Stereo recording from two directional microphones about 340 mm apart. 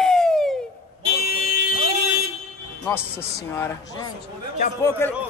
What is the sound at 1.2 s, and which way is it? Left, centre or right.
Vehicle, left.